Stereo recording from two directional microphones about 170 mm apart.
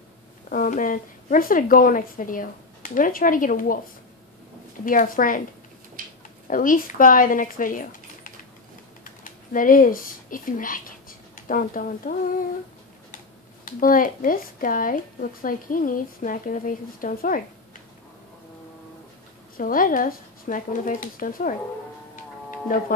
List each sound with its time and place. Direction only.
0.5 s speech: 50° left (ahead or behind)
4.8 s speech: 55° left (ahead or behind)
6.0 s a sound: 55° right (ahead or behind)
6.4 s speech: 55° left (ahead or behind)
13.7 s speech: 55° left (ahead or behind)
19.5 s speech: 55° left (ahead or behind)
22.7 s speech: 55° left (ahead or behind)